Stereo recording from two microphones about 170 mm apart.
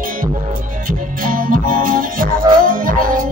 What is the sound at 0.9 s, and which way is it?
Music, 55° right (ahead or behind).